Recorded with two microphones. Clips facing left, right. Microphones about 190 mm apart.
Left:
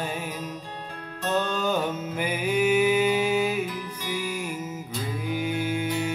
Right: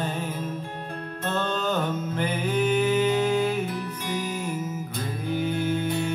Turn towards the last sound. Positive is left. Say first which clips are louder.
# right 1 dB
turn(degrees=10)  # may be behind; listen again after turning